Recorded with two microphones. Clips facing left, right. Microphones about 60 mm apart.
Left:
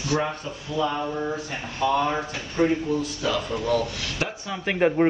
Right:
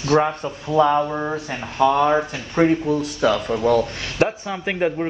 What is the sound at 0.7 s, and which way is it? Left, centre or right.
Speech, right.